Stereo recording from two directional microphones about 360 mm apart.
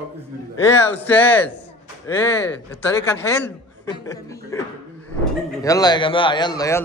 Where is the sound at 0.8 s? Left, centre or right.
Centre.